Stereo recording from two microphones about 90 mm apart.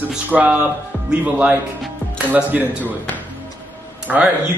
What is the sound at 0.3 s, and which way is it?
Speech, 15° right (ahead or behind).